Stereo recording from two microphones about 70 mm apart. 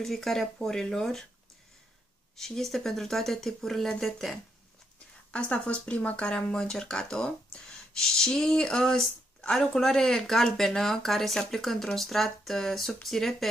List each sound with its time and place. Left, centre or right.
0.0 s speech: centre
2.3 s speech: centre
5.3 s speech: centre